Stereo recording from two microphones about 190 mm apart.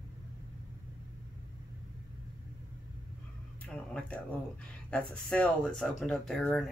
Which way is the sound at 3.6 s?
5° left (ahead or behind).